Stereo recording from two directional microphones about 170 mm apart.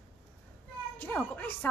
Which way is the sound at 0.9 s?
10° left (ahead or behind).